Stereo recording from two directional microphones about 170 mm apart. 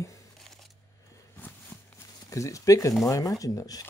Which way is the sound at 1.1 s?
15° left (ahead or behind).